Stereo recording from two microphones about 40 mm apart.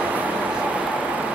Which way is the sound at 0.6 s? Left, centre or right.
Right.